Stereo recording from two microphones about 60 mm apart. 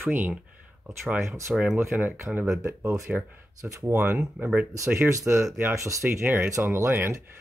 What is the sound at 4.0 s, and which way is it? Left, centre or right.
Speech, right.